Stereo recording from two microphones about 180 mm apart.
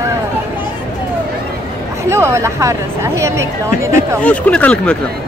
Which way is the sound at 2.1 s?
15° right (ahead or behind).